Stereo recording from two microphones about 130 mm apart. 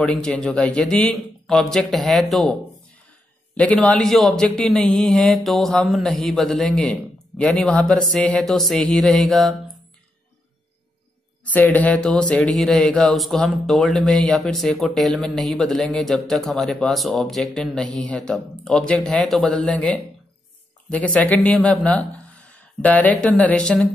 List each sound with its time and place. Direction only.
0.0 s speech: 5° left (ahead or behind)
3.5 s speech: 10° left (ahead or behind)
11.5 s a man's voice: 10° left (ahead or behind)